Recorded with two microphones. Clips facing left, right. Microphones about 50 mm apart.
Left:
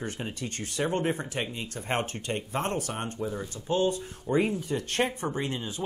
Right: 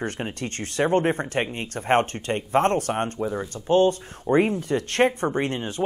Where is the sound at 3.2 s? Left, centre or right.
Right.